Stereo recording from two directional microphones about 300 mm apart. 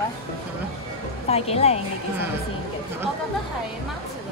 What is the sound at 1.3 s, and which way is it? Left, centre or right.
Speech, centre.